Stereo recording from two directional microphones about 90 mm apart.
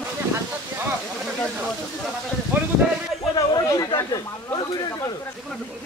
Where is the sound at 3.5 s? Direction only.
50° left (ahead or behind).